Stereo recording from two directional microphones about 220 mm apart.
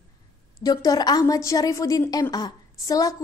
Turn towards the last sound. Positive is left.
turn(degrees=15)  # may be behind; listen again after turning